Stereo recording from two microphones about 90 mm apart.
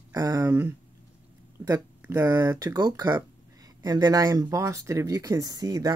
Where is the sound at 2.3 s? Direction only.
40° right (ahead or behind).